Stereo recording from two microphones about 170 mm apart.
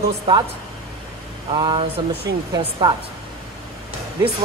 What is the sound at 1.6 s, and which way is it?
Speech, 30° right (ahead or behind).